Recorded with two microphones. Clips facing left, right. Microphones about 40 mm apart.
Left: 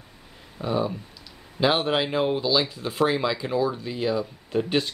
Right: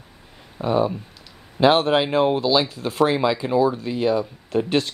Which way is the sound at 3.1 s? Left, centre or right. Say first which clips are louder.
Right 4 dB; centre.